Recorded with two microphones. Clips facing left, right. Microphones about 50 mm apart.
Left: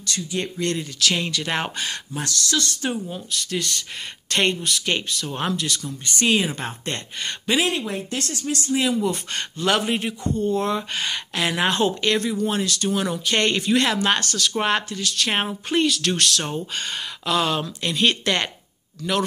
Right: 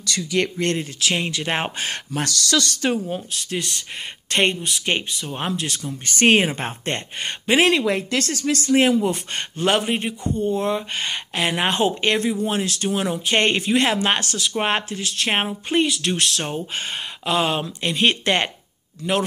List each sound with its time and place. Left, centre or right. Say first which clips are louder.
0.6 s speech: right 2 dB; right
0.9 s speech: even; right
2.1 s speech: right 4 dB; right
3.3 s speech: left 1 dB; right
5.6 s speech: even; right
6.0 s speech: right 4 dB; right
7.7 s speech: right 6 dB; right
8.7 s speech: right 4 dB; right
9.7 s speech: right 1 dB; centre
15.4 s speech: right 1 dB; centre